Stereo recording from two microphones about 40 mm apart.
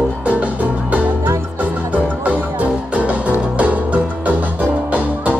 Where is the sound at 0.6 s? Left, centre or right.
Right.